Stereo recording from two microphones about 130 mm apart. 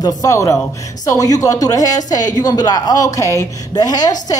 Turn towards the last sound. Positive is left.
turn(degrees=30)  # may be behind; listen again after turning